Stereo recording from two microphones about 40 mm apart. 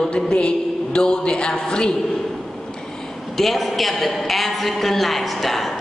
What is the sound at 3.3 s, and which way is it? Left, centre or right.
A woman's voice, centre.